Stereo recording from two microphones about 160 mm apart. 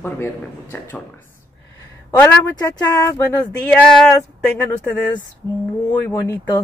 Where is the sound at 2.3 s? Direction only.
20° left (ahead or behind).